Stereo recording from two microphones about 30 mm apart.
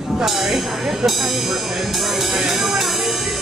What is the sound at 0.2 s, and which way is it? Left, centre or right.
Speech, centre.